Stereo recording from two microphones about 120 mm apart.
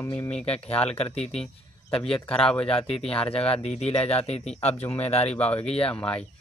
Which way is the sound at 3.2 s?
55° left (ahead or behind).